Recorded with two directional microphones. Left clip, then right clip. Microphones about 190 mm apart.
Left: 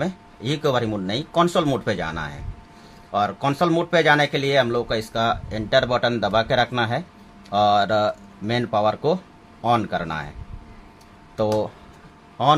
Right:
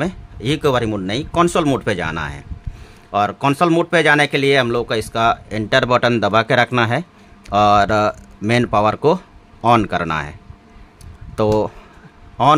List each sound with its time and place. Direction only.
0.0 s speech: 45° right (ahead or behind)
11.3 s speech: 40° right (ahead or behind)